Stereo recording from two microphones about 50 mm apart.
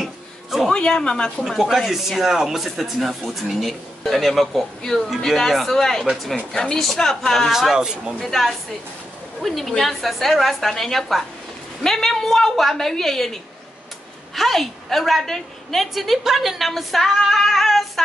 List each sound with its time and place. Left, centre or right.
0.0 s a sound: centre
0.7 s a woman's voice: centre
1.4 s a woman's voice: centre
7.5 s speech: centre
8.2 s a woman's voice: centre